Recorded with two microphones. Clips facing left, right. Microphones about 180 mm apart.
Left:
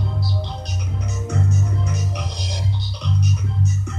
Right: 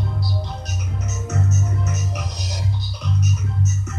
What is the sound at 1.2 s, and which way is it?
Music, 5° right (ahead or behind).